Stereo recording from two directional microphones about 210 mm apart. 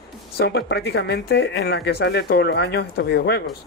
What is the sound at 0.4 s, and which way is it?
Speech, 50° left (ahead or behind).